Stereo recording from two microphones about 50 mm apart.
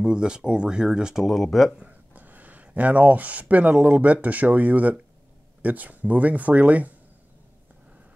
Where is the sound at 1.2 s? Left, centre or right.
Centre.